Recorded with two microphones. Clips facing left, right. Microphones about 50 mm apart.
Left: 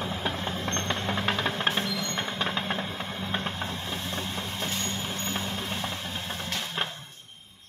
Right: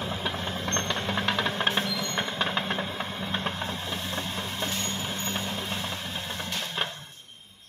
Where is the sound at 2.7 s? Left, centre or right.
Centre.